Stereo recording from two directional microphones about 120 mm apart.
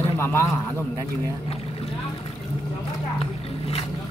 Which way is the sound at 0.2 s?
20° left (ahead or behind).